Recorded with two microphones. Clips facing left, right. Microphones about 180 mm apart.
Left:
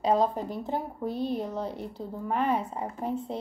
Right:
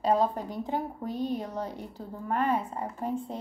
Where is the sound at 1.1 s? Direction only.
15° right (ahead or behind).